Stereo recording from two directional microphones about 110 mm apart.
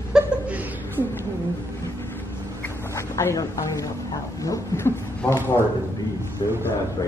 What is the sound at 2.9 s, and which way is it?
Speech, 25° left (ahead or behind).